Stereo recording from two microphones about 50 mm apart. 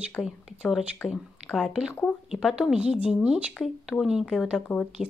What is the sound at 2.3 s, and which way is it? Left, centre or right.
A woman's voice, centre.